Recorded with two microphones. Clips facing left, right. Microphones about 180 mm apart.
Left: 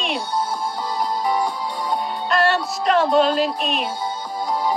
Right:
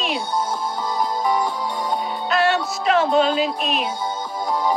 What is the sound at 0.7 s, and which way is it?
Music, 45° right (ahead or behind).